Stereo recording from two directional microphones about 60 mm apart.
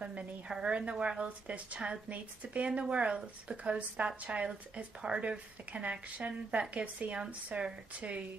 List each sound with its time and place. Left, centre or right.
0.5 s a woman's voice: centre